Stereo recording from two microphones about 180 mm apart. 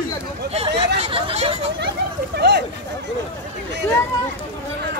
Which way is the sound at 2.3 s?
70° right (ahead or behind).